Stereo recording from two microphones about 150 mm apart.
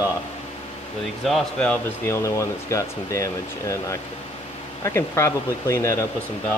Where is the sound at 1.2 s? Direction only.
5° left (ahead or behind).